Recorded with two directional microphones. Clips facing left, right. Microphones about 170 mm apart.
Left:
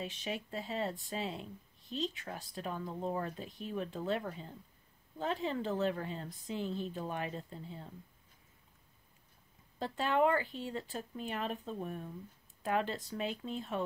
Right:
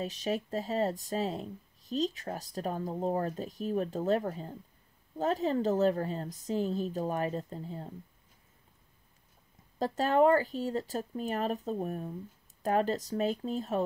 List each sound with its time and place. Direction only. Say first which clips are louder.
0.0 s speech: right 7 dB; 40° right (ahead or behind)
9.8 s speech: right 5 dB; 40° right (ahead or behind)